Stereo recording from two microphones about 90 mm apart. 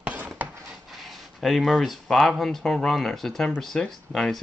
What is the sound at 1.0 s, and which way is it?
Speech, centre (ahead or behind).